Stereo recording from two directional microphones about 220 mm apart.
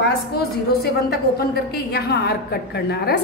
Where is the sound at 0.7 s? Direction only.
45° left (ahead or behind).